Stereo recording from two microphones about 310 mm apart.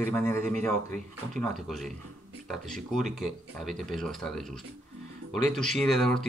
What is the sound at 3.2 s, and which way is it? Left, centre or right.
Speech, centre.